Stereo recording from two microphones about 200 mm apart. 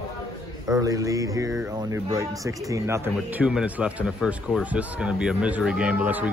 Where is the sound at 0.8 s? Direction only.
15° right (ahead or behind).